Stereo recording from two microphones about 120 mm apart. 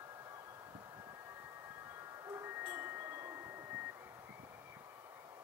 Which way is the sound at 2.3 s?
15° right (ahead or behind).